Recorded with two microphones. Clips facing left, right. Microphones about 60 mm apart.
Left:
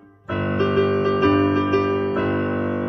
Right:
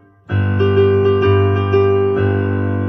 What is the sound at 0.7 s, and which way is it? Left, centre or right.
Music, centre.